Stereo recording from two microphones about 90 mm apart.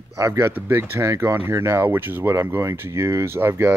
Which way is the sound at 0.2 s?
30° right (ahead or behind).